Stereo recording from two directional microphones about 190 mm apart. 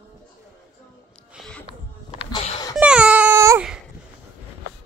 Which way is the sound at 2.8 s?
5° right (ahead or behind).